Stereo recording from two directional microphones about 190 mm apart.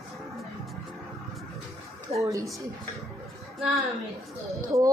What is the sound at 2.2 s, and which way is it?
Speech, 15° right (ahead or behind).